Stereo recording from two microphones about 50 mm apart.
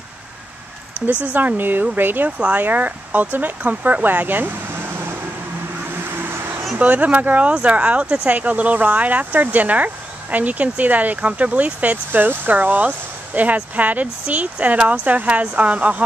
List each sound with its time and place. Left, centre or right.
1.2 s speech: right
2.3 s speech: right
6.0 s vehicle: right
6.8 s speech: right